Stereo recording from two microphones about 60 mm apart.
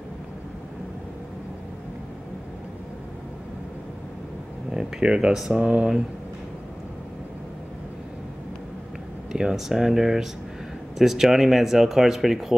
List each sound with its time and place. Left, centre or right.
4.6 s speech: centre
5.6 s speech: centre
9.3 s speech: centre